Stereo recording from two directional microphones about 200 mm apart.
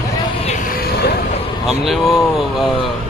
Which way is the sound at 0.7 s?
50° left (ahead or behind).